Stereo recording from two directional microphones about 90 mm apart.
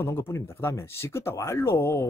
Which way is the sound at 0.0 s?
25° left (ahead or behind).